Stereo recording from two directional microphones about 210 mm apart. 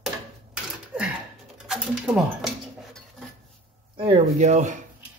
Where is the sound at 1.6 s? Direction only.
5° right (ahead or behind).